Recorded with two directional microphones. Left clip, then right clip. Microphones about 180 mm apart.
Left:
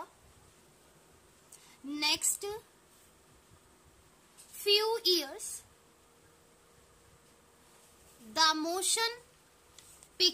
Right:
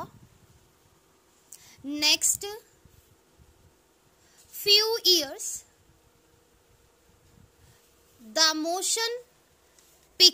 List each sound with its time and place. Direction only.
1.9 s a sound: 35° right (ahead or behind)
4.6 s speech: 35° right (ahead or behind)
8.3 s a child's voice: 30° right (ahead or behind)
8.5 s child singing: 20° right (ahead or behind)